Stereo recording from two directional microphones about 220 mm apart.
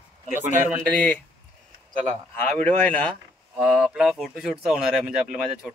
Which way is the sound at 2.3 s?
5° left (ahead or behind).